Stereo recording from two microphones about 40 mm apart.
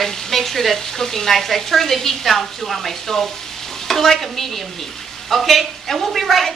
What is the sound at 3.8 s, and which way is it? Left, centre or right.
Stir, centre.